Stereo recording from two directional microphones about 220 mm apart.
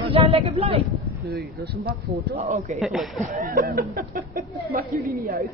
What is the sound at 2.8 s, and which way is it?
Speech, centre (ahead or behind).